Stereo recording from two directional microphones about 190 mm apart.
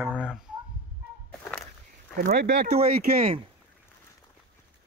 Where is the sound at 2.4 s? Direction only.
60° right (ahead or behind).